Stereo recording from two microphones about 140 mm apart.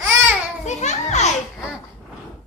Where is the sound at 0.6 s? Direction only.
55° left (ahead or behind).